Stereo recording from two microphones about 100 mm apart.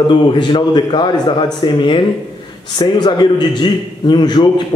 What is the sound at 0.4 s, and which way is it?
A man's voice, 50° left (ahead or behind).